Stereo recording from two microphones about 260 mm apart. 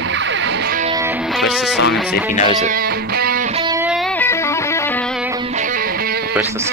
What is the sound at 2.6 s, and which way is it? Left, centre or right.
Music, right.